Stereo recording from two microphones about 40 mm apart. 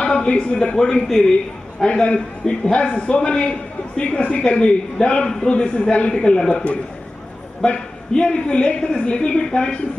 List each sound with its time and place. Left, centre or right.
0.0 s a man's voice: left
6.5 s a man's voice: left